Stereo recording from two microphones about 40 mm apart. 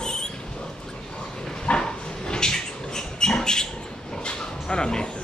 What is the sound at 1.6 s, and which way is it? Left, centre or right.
Dog, left.